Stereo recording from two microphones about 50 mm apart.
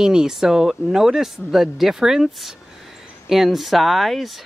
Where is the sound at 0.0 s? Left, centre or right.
Centre.